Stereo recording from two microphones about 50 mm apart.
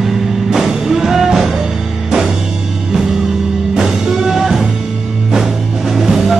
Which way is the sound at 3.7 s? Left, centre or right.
Centre.